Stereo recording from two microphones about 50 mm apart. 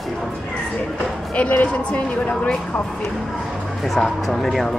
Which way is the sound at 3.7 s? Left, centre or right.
Centre.